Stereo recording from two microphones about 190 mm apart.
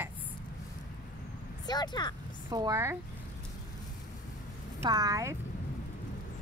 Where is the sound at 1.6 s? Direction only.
20° left (ahead or behind).